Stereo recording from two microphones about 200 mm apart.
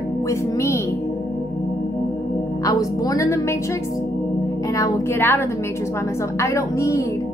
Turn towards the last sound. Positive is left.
turn(degrees=15)  # may be behind; listen again after turning